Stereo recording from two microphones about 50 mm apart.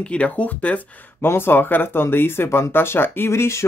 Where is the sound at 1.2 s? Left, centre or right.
Left.